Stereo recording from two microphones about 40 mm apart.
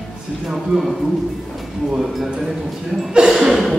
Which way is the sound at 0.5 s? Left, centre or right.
Centre.